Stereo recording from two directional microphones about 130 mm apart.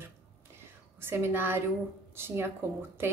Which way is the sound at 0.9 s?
20° right (ahead or behind).